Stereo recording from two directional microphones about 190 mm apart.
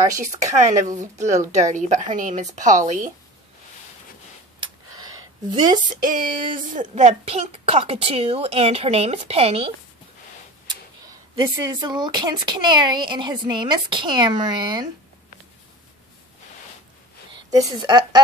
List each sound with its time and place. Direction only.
0.0 s speech: 15° right (ahead or behind)
0.7 s a woman's voice: 40° right (ahead or behind)
4.6 s a sound: 20° right (ahead or behind)
6.0 s a woman's voice: 45° right (ahead or behind)
11.3 s a child's voice: 20° right (ahead or behind)
17.5 s a woman's voice: 20° right (ahead or behind)